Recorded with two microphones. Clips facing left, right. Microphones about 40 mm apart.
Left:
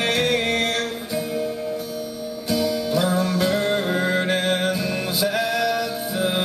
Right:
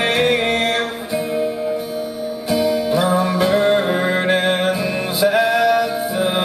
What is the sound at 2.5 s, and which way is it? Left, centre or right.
Music, centre.